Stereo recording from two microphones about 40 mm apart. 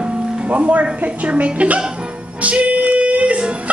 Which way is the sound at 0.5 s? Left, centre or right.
Right.